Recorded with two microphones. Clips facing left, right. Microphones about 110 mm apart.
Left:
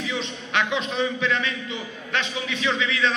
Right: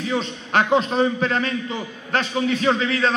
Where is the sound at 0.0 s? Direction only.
40° right (ahead or behind).